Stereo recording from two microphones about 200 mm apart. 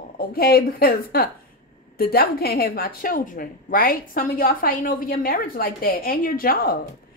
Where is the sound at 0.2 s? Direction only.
50° left (ahead or behind).